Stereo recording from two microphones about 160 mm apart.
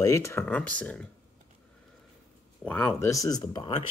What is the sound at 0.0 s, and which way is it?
Speech, 20° left (ahead or behind).